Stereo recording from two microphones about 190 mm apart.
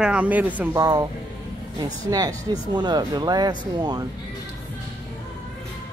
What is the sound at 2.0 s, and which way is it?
Speech, 20° right (ahead or behind).